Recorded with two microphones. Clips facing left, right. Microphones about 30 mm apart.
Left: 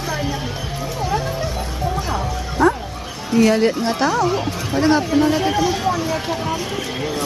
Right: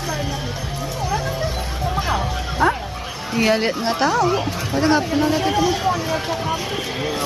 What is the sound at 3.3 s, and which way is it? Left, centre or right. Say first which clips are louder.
Speech: left 3 dB; centre.